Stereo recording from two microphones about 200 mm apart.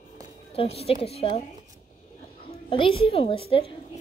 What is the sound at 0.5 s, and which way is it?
Speech, 30° left (ahead or behind).